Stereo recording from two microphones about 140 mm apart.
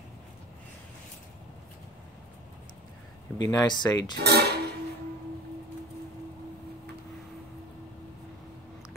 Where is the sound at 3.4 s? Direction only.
30° left (ahead or behind).